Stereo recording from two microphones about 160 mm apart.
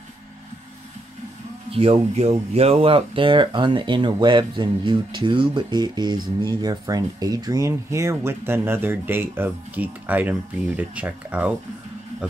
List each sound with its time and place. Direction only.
1.7 s speech: 35° right (ahead or behind); by 11.5 s 10° right (ahead or behind)